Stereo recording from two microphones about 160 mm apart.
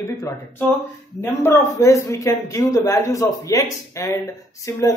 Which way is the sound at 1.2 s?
15° left (ahead or behind).